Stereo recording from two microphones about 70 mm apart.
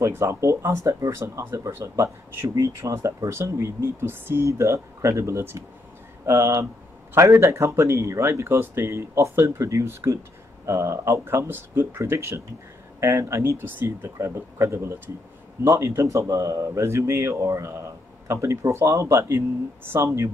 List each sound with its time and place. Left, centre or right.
0.0 s speech: right
4.5 s speech: right
14.0 s speech: right